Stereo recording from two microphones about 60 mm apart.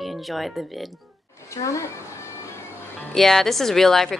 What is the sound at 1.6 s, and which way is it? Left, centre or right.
Speech, left.